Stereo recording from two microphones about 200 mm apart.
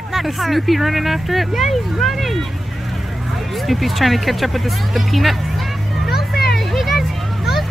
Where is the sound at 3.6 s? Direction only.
Centre (ahead or behind).